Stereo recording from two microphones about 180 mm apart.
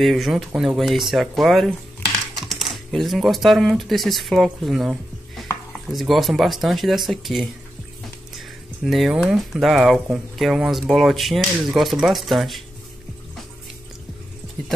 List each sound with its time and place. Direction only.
0.0 s speech: centre (ahead or behind)